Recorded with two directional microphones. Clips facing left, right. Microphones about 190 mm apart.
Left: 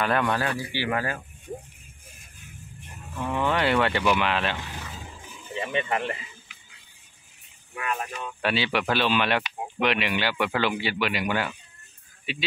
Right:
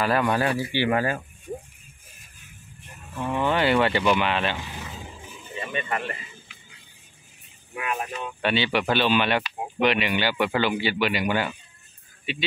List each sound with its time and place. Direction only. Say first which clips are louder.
0.0 s speech: right 2 dB; 5° right (ahead or behind)
0.3 s speech: right 3 dB; 15° right (ahead or behind)
0.6 s speech: right 5 dB; 25° right (ahead or behind)
3.2 s speech: right 2 dB; 10° right (ahead or behind)
5.7 s speech: left 2 dB; 20° left (ahead or behind)
7.7 s speech: right 1 dB; 20° right (ahead or behind)
8.4 s speech: right 2 dB; centre (ahead or behind)